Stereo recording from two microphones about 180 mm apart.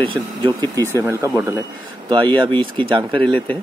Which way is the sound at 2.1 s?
25° right (ahead or behind).